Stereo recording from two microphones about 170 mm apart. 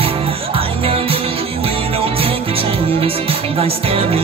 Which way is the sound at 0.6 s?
35° right (ahead or behind).